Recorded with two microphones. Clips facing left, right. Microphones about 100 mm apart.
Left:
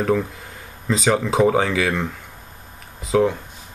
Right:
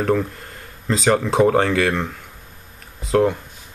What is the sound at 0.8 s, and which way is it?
Speech, centre (ahead or behind).